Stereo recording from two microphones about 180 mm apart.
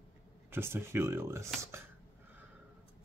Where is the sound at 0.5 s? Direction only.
15° right (ahead or behind).